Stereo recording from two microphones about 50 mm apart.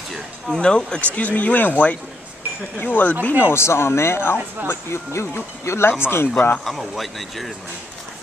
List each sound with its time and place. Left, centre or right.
0.5 s speech: centre
1.1 s speech: left
6.6 s speech: centre